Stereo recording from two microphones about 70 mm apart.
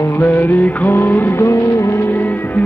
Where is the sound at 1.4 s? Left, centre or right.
Left.